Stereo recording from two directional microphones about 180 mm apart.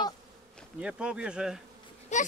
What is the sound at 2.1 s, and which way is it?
Speech, 40° left (ahead or behind).